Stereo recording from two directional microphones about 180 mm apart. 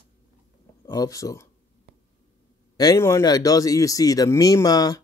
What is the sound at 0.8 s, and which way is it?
Speech, 20° left (ahead or behind).